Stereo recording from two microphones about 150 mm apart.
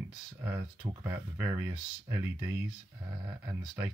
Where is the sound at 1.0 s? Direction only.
20° right (ahead or behind).